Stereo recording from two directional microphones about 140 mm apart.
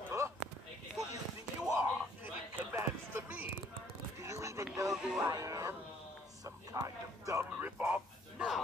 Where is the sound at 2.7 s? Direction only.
15° right (ahead or behind).